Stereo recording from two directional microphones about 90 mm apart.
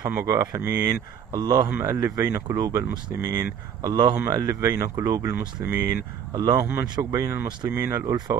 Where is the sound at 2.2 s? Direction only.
35° right (ahead or behind).